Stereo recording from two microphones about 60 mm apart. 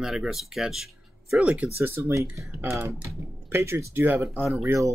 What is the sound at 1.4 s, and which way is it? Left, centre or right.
Speech, right.